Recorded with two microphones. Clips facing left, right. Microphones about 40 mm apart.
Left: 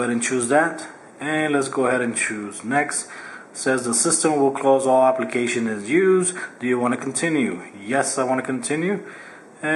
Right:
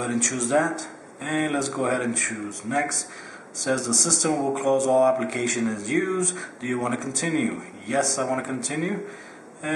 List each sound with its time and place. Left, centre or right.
0.0 s speech: centre